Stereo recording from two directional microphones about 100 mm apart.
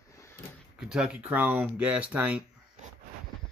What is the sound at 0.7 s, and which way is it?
Speech, 10° right (ahead or behind).